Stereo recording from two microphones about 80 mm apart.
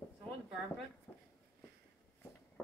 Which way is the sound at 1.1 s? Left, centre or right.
Left.